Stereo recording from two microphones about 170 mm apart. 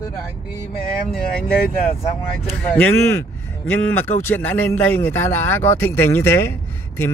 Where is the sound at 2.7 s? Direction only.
10° left (ahead or behind).